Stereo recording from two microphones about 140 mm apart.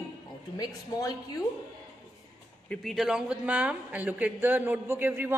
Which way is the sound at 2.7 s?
Centre (ahead or behind).